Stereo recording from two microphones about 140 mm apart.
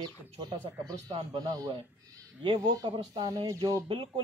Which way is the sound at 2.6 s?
25° right (ahead or behind).